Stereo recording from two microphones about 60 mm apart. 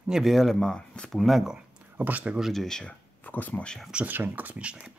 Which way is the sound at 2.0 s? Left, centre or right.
Right.